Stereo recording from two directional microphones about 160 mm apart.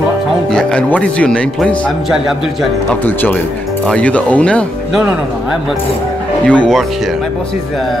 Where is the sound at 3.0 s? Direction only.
10° left (ahead or behind).